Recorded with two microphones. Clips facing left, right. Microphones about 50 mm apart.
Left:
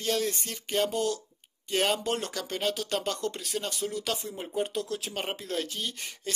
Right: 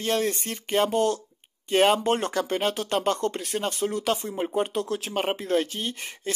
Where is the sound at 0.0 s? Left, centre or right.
Right.